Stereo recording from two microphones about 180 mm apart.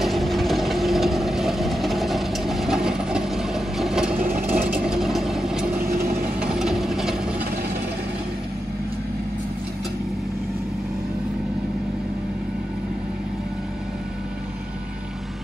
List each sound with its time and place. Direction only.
0.0 s vehicle: centre (ahead or behind)
5.8 s vehicle: 55° right (ahead or behind)
6.4 s engine: 5° right (ahead or behind)